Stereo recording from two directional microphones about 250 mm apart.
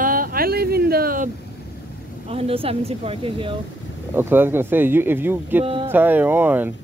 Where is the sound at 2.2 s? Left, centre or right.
Right.